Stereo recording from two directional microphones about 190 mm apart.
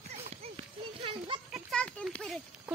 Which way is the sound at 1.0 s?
25° right (ahead or behind).